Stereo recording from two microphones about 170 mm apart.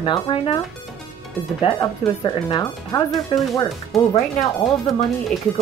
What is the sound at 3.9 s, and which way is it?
Speech, centre (ahead or behind).